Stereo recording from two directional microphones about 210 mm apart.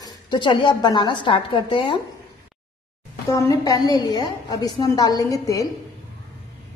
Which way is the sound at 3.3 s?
15° left (ahead or behind).